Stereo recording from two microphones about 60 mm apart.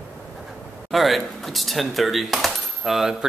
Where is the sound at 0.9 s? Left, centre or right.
Centre.